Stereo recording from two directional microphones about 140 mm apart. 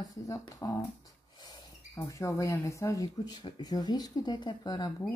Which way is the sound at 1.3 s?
30° left (ahead or behind).